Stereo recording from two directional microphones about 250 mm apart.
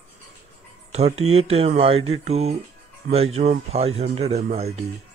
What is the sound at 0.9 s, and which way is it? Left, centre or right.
Speech, right.